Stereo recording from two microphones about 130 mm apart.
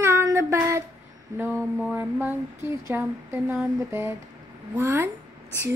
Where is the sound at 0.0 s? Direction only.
20° right (ahead or behind).